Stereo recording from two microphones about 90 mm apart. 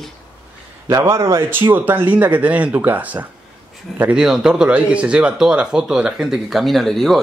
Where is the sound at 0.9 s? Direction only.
35° right (ahead or behind); by 3.2 s 20° right (ahead or behind).